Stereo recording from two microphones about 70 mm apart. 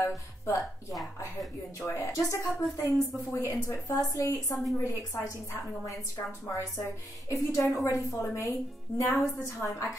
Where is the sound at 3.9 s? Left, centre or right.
Left.